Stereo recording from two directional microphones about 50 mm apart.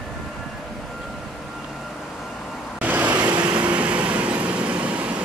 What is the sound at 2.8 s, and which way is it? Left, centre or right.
Vehicle, right.